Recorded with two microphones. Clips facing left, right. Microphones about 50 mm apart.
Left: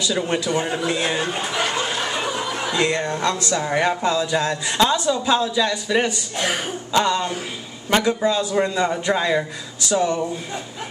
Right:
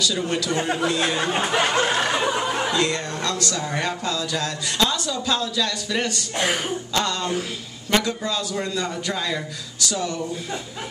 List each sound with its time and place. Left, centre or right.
0.0 s speech: left
1.2 s speech: right
2.1 s a sound: right
2.7 s speech: left